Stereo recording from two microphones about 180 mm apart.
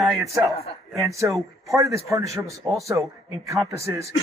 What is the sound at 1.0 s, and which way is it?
A man's voice, 15° right (ahead or behind).